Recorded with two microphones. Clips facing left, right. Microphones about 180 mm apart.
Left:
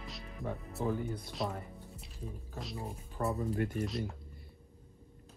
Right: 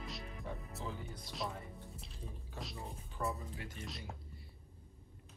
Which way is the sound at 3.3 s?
55° left (ahead or behind).